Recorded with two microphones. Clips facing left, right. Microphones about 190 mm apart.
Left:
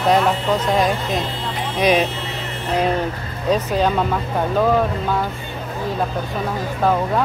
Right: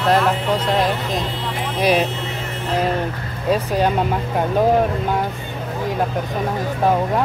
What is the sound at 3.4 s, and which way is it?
Speech, 10° right (ahead or behind).